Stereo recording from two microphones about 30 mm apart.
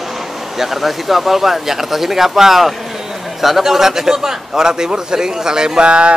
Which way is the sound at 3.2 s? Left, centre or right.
Centre.